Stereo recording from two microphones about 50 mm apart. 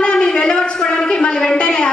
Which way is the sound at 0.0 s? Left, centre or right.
Centre.